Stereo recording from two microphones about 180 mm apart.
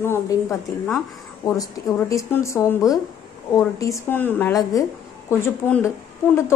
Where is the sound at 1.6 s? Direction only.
20° left (ahead or behind).